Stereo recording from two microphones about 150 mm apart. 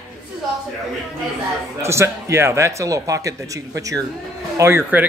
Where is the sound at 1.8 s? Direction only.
20° right (ahead or behind).